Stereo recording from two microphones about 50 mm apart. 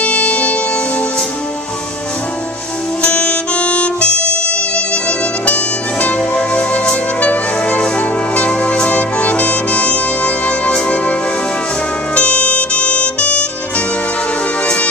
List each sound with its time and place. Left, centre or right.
0.0 s music: left
3.0 s saxophone: left
8.0 s brass instrument: left
12.2 s music: left